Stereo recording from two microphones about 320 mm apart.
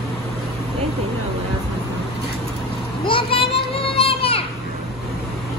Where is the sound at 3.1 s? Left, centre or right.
Centre.